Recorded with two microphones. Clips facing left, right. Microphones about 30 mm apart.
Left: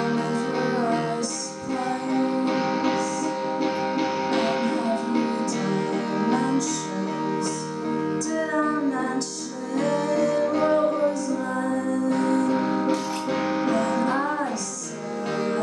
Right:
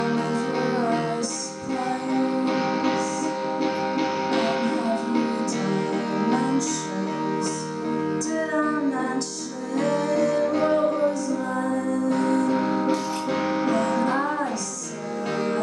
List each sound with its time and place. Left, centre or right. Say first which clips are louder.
0.0 s music: even; centre
9.8 s music: even; centre
10.3 s music: even; centre
12.3 s music: even; centre